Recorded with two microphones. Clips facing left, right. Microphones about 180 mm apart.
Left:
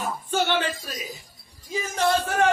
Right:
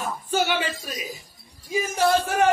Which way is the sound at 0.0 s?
5° right (ahead or behind).